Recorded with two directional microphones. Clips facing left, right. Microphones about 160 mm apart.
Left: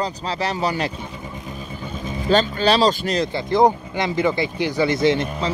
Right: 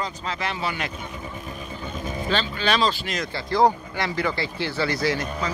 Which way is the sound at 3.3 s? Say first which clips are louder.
Left 2 dB; 20° left (ahead or behind).